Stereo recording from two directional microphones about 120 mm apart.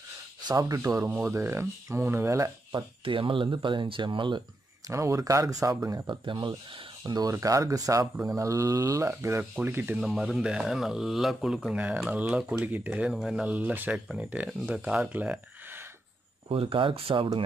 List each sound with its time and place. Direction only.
0.5 s speech: 30° right (ahead or behind)
2.7 s speech: 45° right (ahead or behind)
4.8 s speech: 25° right (ahead or behind)
6.0 s speech: 40° right (ahead or behind); by 9.9 s 15° right (ahead or behind)
9.9 s speech: 5° right (ahead or behind)
16.4 s speech: 50° right (ahead or behind)